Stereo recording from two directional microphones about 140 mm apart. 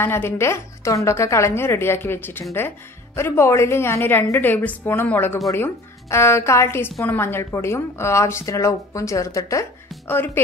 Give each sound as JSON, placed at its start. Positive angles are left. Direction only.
{"t": 0.0, "sound": "a woman's voice", "side_deg": 15}